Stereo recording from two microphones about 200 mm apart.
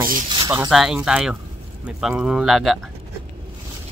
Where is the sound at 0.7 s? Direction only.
Centre (ahead or behind).